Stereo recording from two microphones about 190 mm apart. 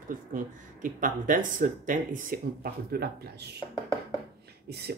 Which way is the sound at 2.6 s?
60° right (ahead or behind).